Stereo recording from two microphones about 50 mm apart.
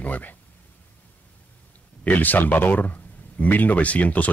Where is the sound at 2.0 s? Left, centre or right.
Left.